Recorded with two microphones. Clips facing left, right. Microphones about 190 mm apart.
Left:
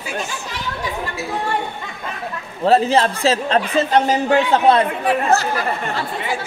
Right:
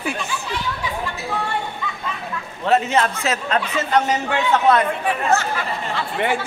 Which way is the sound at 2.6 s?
35° left (ahead or behind).